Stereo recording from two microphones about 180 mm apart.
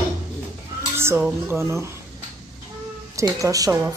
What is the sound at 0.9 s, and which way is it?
Speech, 10° right (ahead or behind).